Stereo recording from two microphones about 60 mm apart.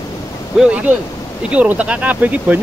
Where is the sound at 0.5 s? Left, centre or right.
Centre.